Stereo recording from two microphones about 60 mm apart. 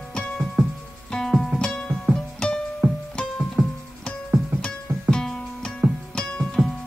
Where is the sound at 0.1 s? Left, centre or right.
Centre.